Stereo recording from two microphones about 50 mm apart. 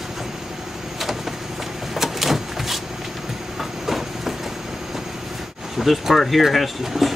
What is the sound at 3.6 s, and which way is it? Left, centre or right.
Train, centre.